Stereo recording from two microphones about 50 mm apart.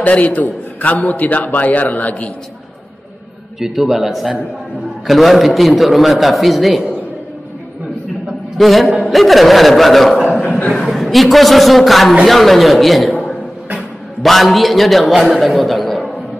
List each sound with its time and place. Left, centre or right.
0.0 s a man's voice: left
3.5 s a man's voice: centre
8.5 s a man's voice: centre
10.6 s speech: left
10.9 s a man's voice: centre
14.2 s a man's voice: centre